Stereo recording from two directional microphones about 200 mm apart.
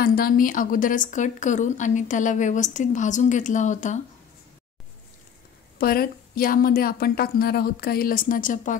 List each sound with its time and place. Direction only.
0.0 s speech: 45° left (ahead or behind)
5.8 s a woman's voice: 50° left (ahead or behind)